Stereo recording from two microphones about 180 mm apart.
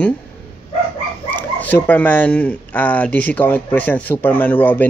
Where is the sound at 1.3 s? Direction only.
10° left (ahead or behind).